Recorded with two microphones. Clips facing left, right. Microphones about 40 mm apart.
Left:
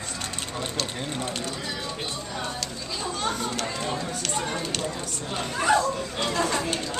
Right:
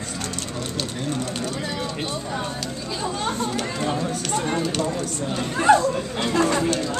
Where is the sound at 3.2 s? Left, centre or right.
Centre.